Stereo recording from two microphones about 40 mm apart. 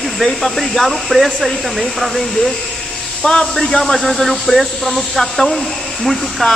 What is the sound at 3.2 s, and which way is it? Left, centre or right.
Speech, left.